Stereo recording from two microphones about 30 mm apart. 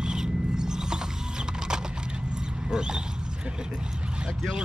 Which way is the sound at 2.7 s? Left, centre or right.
Right.